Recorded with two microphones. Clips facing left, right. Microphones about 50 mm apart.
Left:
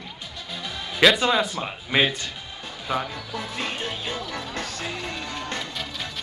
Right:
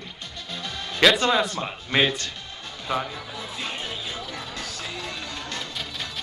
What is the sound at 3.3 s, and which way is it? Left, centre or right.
Music, left.